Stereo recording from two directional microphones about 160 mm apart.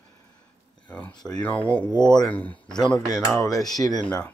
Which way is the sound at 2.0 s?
25° left (ahead or behind).